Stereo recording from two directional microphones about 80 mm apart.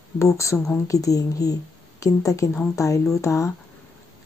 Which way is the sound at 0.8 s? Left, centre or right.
Left.